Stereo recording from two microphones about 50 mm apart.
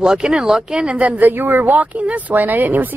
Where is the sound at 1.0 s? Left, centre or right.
Right.